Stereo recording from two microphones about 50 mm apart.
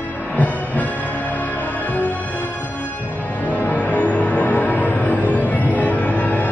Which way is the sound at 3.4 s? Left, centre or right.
Left.